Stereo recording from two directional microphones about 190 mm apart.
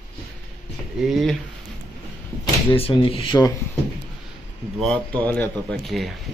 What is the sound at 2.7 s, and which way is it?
Speech, 30° left (ahead or behind).